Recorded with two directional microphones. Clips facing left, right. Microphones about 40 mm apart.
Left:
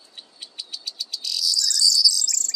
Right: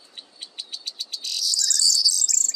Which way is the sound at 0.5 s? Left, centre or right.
Right.